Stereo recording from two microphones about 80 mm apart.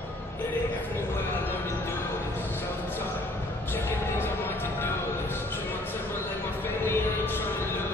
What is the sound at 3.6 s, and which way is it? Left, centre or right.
Music, left.